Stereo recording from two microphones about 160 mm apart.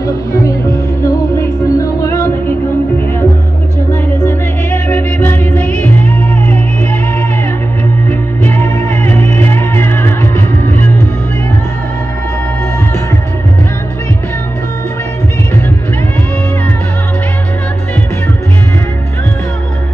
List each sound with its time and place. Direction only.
0.0 s music: 20° left (ahead or behind)
3.9 s music: 15° left (ahead or behind)
8.1 s music: 15° left (ahead or behind)